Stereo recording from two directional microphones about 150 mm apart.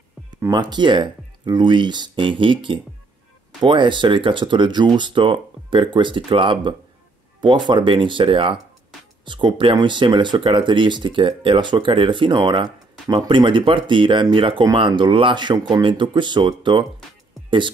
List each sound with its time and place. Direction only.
0.4 s speech: 30° right (ahead or behind)